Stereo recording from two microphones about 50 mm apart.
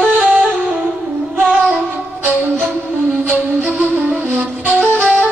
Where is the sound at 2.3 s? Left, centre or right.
Right.